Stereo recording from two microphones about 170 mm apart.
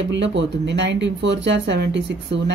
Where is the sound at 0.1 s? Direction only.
90° right.